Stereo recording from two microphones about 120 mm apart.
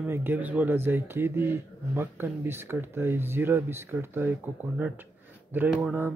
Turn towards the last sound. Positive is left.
turn(degrees=-10)  # may be behind; listen again after turning